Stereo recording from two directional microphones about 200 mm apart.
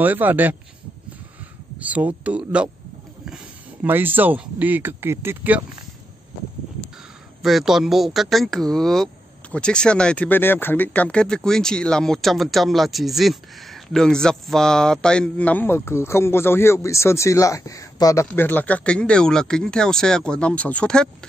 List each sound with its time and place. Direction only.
0.0 s speech: 10° right (ahead or behind)
1.8 s speech: 5° right (ahead or behind)
3.8 s speech: 10° right (ahead or behind)
7.4 s speech: centre (ahead or behind)